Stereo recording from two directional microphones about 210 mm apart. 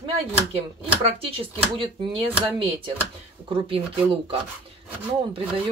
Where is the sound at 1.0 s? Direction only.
25° right (ahead or behind).